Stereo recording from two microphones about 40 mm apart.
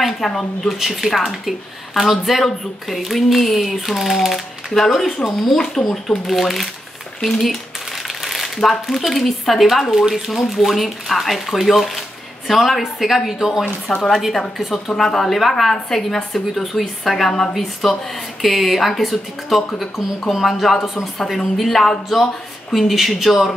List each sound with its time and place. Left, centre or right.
0.2 s speech: centre
7.2 s crumpling: centre
8.6 s speech: centre
13.9 s a woman's voice: centre
17.8 s speech: centre